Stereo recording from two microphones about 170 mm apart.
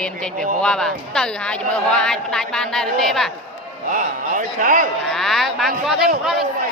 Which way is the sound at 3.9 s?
50° right (ahead or behind).